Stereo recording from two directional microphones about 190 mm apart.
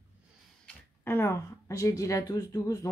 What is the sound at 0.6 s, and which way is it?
Speech, 10° left (ahead or behind).